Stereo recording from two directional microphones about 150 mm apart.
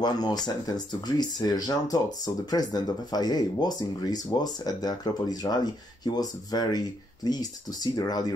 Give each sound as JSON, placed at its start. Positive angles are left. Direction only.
{"t": 0.0, "sound": "speech", "side_deg": 25}